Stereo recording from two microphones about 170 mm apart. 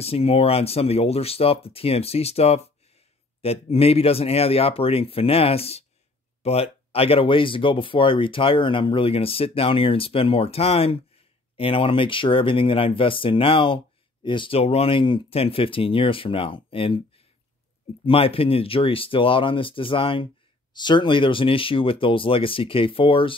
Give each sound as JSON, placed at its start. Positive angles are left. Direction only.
{"t": 0.0, "sound": "speech", "side_deg": 35}